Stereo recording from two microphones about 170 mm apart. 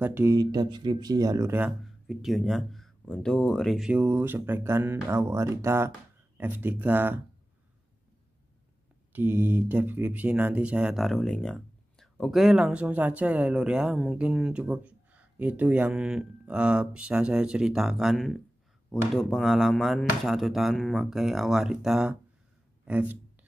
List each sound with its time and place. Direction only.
0.0 s speech: 15° right (ahead or behind)
2.0 s speech: centre (ahead or behind)
9.1 s speech: 10° right (ahead or behind)